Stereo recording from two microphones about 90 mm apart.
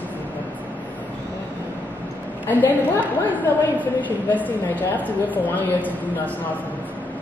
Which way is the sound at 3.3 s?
20° left (ahead or behind).